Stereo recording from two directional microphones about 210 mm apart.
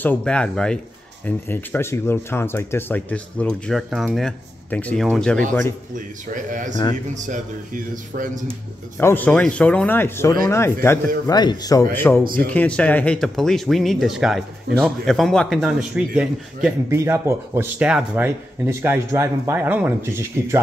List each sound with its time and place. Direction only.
0.0 s speech: 5° left (ahead or behind)
5.9 s speech: 40° right (ahead or behind)
9.0 s a man's voice: 10° left (ahead or behind); by 20.6 s 10° right (ahead or behind)